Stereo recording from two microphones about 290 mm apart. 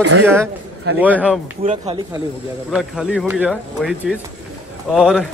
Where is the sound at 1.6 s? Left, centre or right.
Right.